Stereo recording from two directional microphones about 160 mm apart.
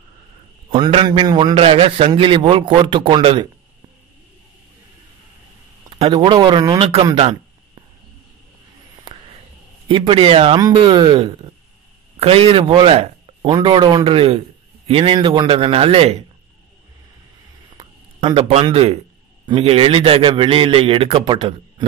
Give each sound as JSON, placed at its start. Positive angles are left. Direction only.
{"t": 0.7, "sound": "a man's voice", "side_deg": -35}
{"t": 1.5, "sound": "a man's voice", "side_deg": -40}
{"t": 5.9, "sound": "a sound", "side_deg": -40}
{"t": 6.1, "sound": "speech", "side_deg": -30}
{"t": 6.8, "sound": "a man's voice", "side_deg": -35}
{"t": 7.2, "sound": "a sound", "side_deg": -35}
{"t": 9.8, "sound": "a man's voice", "side_deg": -35}
{"t": 17.7, "sound": "a sound", "side_deg": -35}
{"t": 19.4, "sound": "a man's voice", "side_deg": -35}